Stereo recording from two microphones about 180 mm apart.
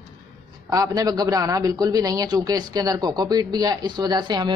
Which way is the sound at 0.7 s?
20° right (ahead or behind).